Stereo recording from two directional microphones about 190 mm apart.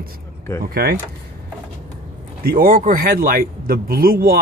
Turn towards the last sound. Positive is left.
turn(degrees=-50)  # may be behind; listen again after turning